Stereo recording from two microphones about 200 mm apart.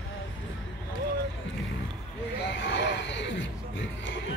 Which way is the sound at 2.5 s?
65° left (ahead or behind).